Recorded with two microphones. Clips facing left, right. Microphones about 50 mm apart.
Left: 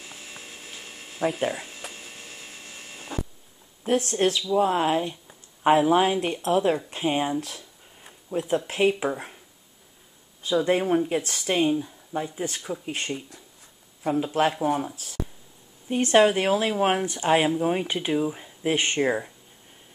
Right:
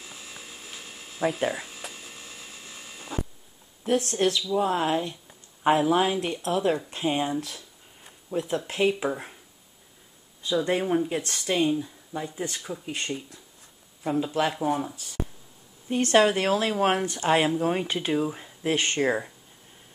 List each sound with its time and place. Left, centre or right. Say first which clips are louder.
1.2 s speech: even; centre
2.4 s a sound: left 1 dB; left
3.8 s speech: left 1 dB; left
4.4 s speech: left 3 dB; centre
4.7 s speech: left 2 dB; left
8.5 s speech: left 3 dB; centre
10.5 s speech: left 2 dB; centre
14.2 s speech: left 3 dB; centre
15.9 s speech: left 2 dB; centre
18.7 s speech: left 1 dB; centre